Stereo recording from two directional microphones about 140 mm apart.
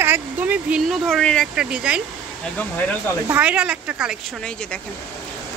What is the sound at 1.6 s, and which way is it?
Speech, 5° right (ahead or behind).